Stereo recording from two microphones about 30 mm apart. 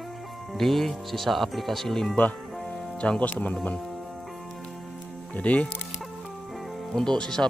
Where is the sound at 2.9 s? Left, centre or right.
Left.